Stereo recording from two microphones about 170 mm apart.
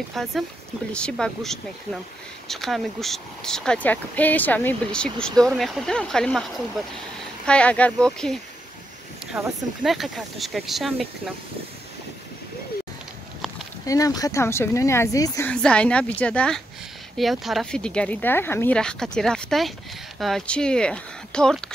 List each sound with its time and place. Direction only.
0.1 s speech: centre (ahead or behind)
7.4 s speech: 5° left (ahead or behind)
13.8 s speech: 20° left (ahead or behind); by 21.6 s 5° left (ahead or behind)